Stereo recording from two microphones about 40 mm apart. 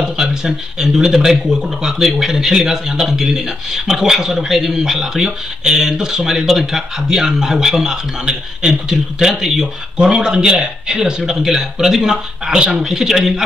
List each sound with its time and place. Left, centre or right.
0.2 s a man's voice: centre